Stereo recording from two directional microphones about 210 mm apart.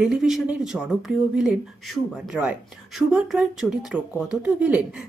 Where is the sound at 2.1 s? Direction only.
Centre (ahead or behind).